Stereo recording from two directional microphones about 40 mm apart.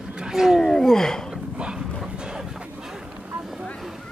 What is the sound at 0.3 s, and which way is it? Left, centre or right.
Roaring cats, centre.